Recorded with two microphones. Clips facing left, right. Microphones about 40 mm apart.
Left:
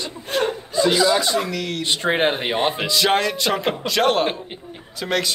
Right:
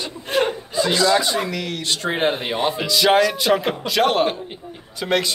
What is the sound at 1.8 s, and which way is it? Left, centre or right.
Speech, left.